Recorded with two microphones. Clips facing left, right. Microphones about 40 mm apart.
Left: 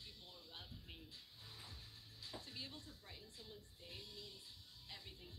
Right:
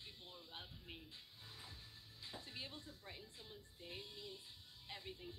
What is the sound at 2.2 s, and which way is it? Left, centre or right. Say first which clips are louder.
Speech: right 1 dB; right.